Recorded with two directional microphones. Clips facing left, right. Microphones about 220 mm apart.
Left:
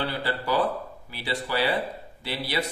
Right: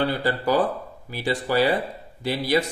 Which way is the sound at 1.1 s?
45° right (ahead or behind).